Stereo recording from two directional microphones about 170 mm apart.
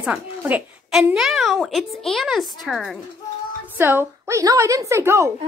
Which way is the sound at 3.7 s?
10° right (ahead or behind).